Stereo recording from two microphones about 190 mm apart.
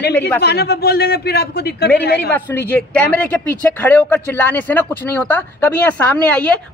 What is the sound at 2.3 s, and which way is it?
Speech, 10° left (ahead or behind).